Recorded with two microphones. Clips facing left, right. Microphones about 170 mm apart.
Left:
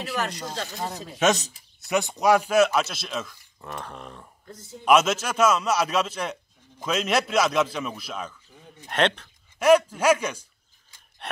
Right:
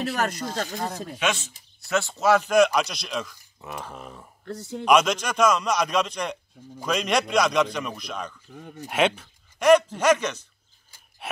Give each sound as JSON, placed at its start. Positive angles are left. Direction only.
{"t": 0.0, "sound": "speech", "side_deg": -50}
{"t": 0.7, "sound": "speech", "side_deg": 0}
{"t": 1.2, "sound": "speech", "side_deg": 40}
{"t": 1.8, "sound": "speech", "side_deg": 15}
{"t": 4.5, "sound": "a man's voice", "side_deg": -80}
{"t": 4.8, "sound": "speech", "side_deg": 5}
{"t": 8.8, "sound": "speech", "side_deg": -5}
{"t": 9.6, "sound": "a man's voice", "side_deg": 10}